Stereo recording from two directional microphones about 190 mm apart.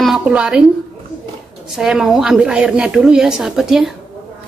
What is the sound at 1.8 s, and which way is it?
A woman's voice, centre (ahead or behind).